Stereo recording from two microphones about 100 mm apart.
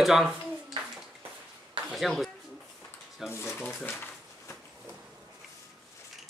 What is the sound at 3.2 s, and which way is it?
Speech, 25° left (ahead or behind).